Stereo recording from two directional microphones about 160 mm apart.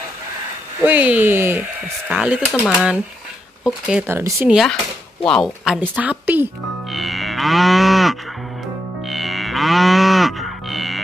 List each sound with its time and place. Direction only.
0.8 s speech: 10° right (ahead or behind)
4.5 s speech: centre (ahead or behind)
6.9 s livestock: centre (ahead or behind)
9.0 s moo: centre (ahead or behind)